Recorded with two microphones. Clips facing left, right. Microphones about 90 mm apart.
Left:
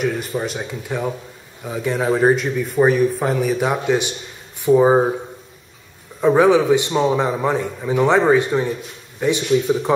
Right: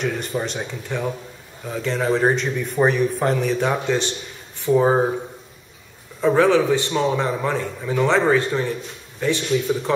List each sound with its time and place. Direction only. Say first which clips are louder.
0.0 s speech: left 2 dB; 5° left (ahead or behind)
6.2 s speech: left 3 dB; 15° left (ahead or behind)